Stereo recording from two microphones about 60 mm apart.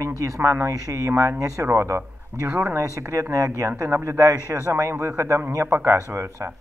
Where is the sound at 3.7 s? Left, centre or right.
Right.